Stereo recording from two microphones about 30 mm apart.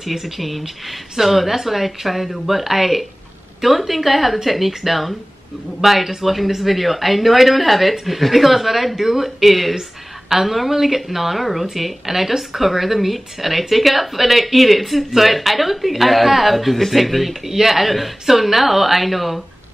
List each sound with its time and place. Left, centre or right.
0.0 s a woman's voice: centre